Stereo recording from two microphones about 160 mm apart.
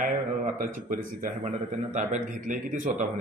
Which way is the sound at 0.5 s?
55° right (ahead or behind).